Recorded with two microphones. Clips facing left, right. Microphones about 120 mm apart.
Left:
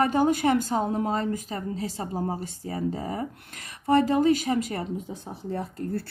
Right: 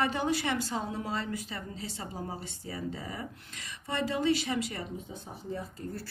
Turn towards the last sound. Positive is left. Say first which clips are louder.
# left 8 dB
turn(degrees=65)  # may be behind; listen again after turning